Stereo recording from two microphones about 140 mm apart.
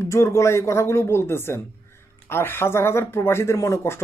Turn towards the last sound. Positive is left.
turn(degrees=20)  # may be behind; listen again after turning